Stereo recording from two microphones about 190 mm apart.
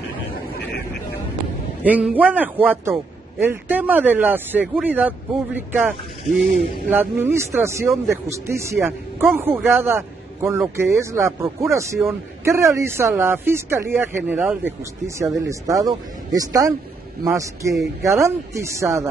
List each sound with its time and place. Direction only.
1.9 s a man's voice: 10° right (ahead or behind)
15.4 s a man's voice: 15° right (ahead or behind)